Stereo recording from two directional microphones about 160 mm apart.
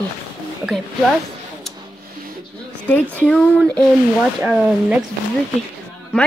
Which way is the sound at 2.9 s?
10° left (ahead or behind).